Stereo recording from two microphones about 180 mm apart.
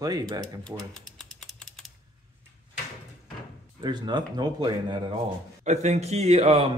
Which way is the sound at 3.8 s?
25° right (ahead or behind).